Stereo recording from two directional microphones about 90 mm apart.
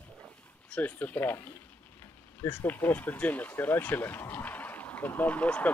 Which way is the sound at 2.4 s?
20° left (ahead or behind).